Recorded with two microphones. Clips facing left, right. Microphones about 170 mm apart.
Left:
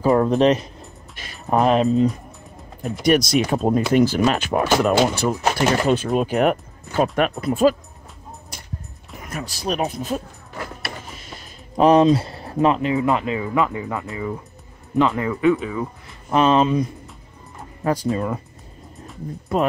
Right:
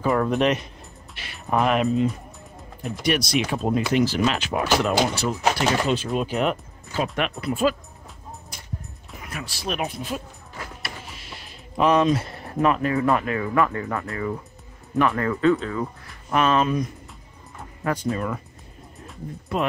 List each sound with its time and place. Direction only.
0.0 s speech: 35° left (ahead or behind)
9.3 s speech: 40° left (ahead or behind)
11.2 s music: 40° left (ahead or behind)
12.5 s speech: 25° left (ahead or behind); by 15.9 s 5° left (ahead or behind)
16.3 s speech: 30° left (ahead or behind)
18.1 s speech: 25° left (ahead or behind)